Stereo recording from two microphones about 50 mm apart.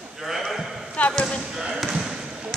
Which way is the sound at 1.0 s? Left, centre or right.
Left.